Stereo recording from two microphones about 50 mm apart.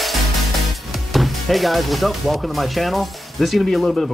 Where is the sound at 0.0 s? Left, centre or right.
Centre.